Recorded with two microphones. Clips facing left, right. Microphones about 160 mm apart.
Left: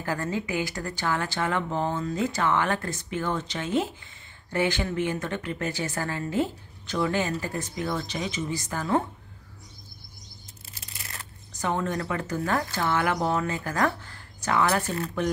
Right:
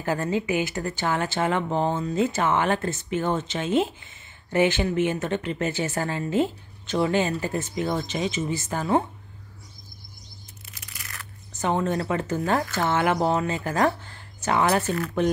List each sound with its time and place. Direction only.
0.0 s a woman's voice: 20° right (ahead or behind)
10.7 s tearing: 30° left (ahead or behind)
11.6 s a woman's voice: 25° right (ahead or behind)